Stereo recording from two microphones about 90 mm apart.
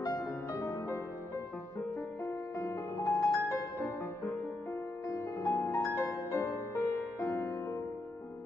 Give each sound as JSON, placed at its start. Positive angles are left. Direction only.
{"t": 0.0, "sound": "music", "side_deg": 40}
{"t": 2.2, "sound": "music", "side_deg": 30}
{"t": 5.4, "sound": "music", "side_deg": 40}